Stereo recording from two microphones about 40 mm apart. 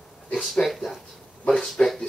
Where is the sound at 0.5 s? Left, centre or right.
Centre.